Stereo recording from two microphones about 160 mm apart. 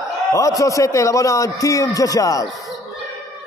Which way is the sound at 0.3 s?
20° left (ahead or behind).